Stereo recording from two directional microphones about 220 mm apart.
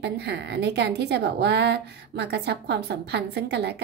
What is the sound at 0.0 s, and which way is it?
A woman's voice, 50° right (ahead or behind).